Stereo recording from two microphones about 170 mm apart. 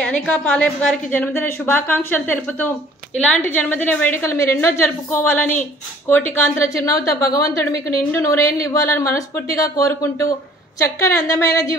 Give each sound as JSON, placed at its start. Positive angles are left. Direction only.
{"t": 0.0, "sound": "a woman's voice", "side_deg": 5}